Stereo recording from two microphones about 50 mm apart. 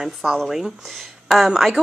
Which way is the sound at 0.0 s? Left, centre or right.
Centre.